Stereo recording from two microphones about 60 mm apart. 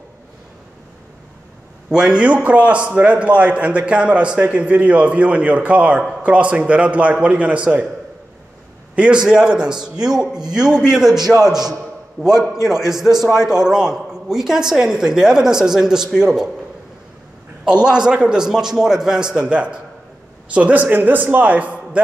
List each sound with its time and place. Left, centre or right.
1.9 s a man's voice: centre
8.9 s a woman's voice: centre
17.6 s a woman's voice: centre